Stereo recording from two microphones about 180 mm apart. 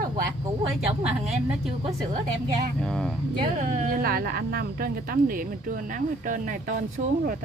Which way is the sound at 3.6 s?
50° right (ahead or behind).